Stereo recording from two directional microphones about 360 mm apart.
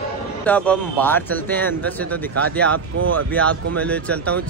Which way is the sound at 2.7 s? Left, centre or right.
Right.